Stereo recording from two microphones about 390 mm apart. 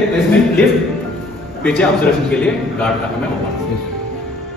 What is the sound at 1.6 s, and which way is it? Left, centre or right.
A man's voice, centre.